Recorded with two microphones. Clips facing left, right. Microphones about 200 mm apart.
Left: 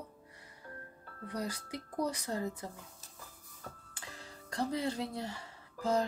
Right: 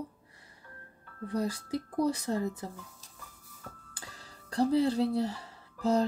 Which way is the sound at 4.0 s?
35° right (ahead or behind).